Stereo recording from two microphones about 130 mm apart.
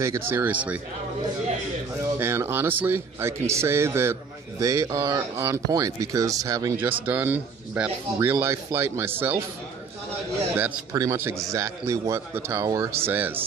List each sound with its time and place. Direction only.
0.0 s speech: 20° right (ahead or behind)
2.1 s a man's voice: 20° right (ahead or behind)
6.8 s speech: 15° right (ahead or behind)
10.5 s a man's voice: 15° right (ahead or behind)
13.1 s speech: 15° right (ahead or behind)